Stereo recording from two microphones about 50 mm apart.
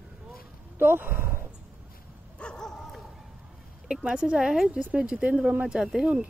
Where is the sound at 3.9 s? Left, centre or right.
Centre.